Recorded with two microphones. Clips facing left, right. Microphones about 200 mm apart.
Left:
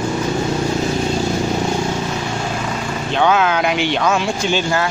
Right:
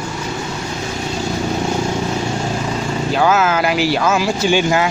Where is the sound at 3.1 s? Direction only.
5° right (ahead or behind).